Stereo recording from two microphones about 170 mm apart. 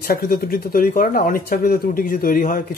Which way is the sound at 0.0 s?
60° left (ahead or behind).